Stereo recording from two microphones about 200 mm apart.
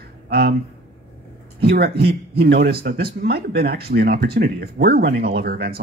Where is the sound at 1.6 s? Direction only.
55° right (ahead or behind).